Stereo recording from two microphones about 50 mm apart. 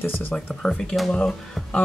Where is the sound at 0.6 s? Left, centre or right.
Centre.